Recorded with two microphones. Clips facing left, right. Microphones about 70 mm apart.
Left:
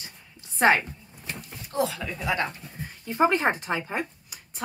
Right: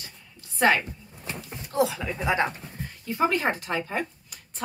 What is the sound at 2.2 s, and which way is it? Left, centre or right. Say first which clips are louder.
Speech: right 3 dB; right.